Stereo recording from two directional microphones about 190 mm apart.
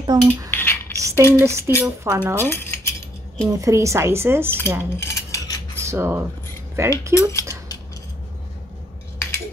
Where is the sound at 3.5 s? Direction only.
15° right (ahead or behind).